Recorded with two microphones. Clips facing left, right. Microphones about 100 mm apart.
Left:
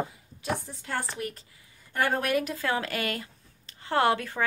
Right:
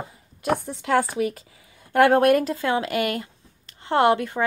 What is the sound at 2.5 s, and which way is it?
Speech, 25° right (ahead or behind).